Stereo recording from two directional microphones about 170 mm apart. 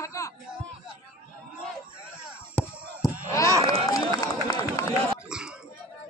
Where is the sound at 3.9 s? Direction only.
20° left (ahead or behind).